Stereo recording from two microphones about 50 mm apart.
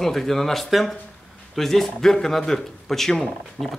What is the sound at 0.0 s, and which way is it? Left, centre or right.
A man's voice, centre.